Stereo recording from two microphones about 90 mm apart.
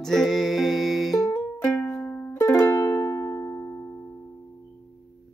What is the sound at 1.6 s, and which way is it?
Music, 20° left (ahead or behind).